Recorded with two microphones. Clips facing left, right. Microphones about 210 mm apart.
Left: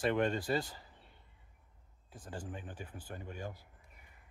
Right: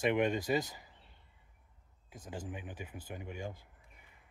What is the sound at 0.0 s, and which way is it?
Speech, 10° right (ahead or behind).